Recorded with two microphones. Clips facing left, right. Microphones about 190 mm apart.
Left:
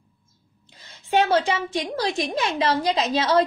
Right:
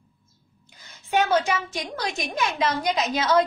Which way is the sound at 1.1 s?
30° left (ahead or behind).